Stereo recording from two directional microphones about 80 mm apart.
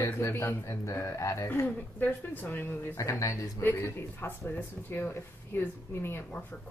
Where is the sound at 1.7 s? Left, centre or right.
Left.